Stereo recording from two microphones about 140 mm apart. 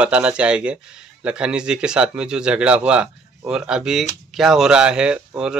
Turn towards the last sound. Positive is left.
turn(degrees=-5)  # may be behind; listen again after turning